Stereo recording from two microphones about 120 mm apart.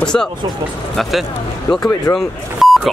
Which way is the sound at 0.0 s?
5° left (ahead or behind).